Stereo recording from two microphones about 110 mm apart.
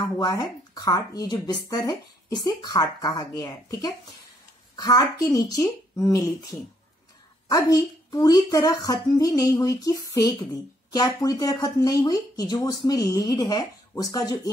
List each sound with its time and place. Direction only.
0.2 s speech: 35° left (ahead or behind)